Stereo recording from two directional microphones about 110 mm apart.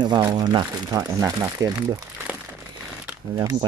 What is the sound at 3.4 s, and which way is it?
Speech, 35° right (ahead or behind).